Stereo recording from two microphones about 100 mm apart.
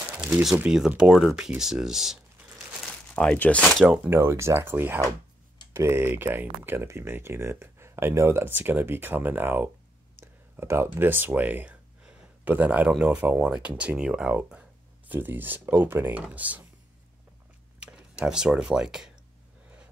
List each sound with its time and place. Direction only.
0.2 s speech: 5° right (ahead or behind)
3.2 s speech: 15° left (ahead or behind)
3.8 s speech: 15° right (ahead or behind)
4.2 s speech: 25° right (ahead or behind)
10.2 s a sound: 20° right (ahead or behind)
12.9 s speech: 15° right (ahead or behind)
17.7 s speech: 10° right (ahead or behind)